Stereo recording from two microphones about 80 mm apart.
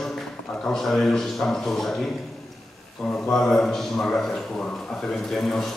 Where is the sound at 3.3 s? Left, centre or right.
Centre.